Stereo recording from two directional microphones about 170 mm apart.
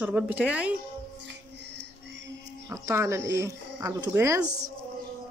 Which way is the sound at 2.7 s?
20° right (ahead or behind).